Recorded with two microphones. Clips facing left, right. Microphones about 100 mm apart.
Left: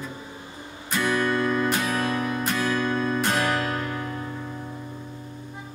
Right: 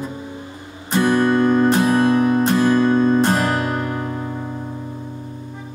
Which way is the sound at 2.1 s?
35° right (ahead or behind).